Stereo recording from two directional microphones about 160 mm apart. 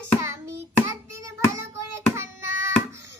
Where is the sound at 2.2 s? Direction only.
15° right (ahead or behind).